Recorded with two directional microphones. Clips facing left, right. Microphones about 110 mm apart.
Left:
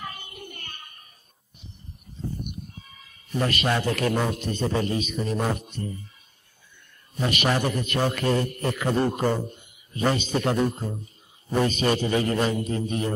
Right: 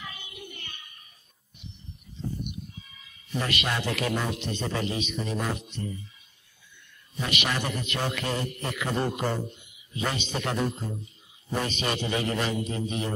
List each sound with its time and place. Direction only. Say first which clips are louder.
0.0 s child singing: left 4 dB; 45° left (ahead or behind)
1.6 s a sound: right 2 dB; 35° left (ahead or behind)
2.4 s a man's voice: left 1 dB; 45° left (ahead or behind)
7.2 s a man's voice: left 5 dB; 40° left (ahead or behind)